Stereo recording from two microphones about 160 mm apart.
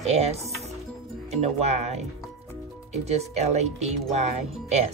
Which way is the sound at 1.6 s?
45° right (ahead or behind).